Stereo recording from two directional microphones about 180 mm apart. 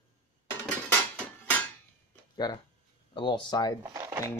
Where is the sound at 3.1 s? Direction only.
25° left (ahead or behind).